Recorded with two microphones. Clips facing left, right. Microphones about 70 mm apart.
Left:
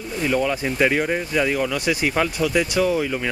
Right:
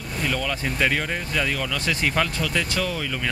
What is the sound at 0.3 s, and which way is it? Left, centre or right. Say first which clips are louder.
Speech: left 7 dB; left.